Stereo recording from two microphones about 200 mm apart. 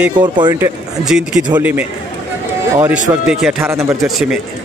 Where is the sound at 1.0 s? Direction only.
Centre (ahead or behind).